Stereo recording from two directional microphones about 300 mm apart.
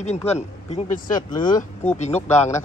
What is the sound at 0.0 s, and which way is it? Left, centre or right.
Speech, left.